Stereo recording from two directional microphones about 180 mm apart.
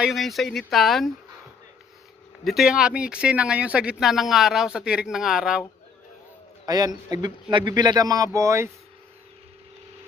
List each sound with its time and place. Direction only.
0.0 s speech: centre (ahead or behind)
2.4 s speech: centre (ahead or behind)
6.6 s a man's voice: 20° right (ahead or behind)